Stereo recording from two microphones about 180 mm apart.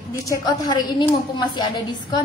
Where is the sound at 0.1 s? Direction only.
20° left (ahead or behind).